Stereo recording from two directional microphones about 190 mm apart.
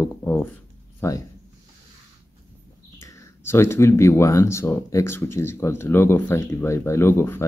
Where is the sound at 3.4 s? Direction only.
15° left (ahead or behind).